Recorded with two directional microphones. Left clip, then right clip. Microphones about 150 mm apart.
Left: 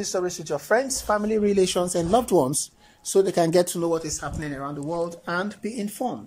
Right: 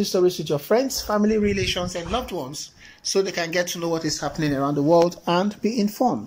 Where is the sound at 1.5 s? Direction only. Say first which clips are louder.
Left 3 dB; 35° left (ahead or behind); by 2.5 s 50° left (ahead or behind).